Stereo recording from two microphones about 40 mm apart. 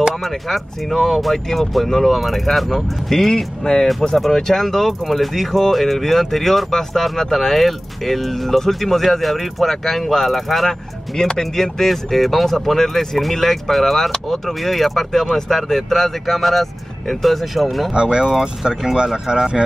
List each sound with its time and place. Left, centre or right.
0.2 s speech: centre
11.1 s speech: centre
17.9 s speech: right